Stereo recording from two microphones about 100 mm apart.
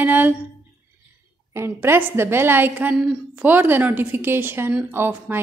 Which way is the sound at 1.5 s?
25° right (ahead or behind).